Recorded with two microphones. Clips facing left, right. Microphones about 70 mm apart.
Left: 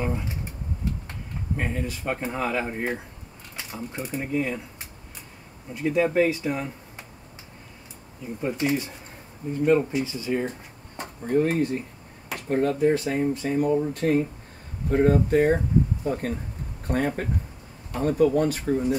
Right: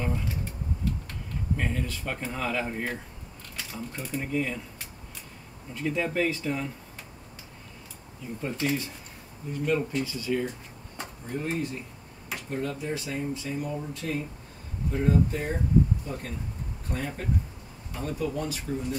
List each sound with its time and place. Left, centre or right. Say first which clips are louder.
0.0 s a sound: left 3 dB; left
1.6 s speech: left 5 dB; centre
5.7 s speech: left 6 dB; centre
8.4 s speech: left 4 dB; centre
11.0 s speech: left 11 dB; left